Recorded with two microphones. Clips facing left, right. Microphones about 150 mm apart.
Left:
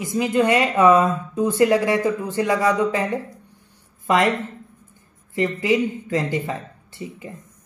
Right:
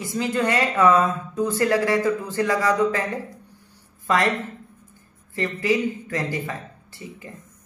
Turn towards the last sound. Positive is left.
turn(degrees=20)  # may be behind; listen again after turning